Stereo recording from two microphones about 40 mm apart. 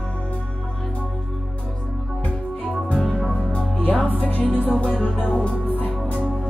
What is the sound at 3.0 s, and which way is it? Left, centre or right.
Music, centre.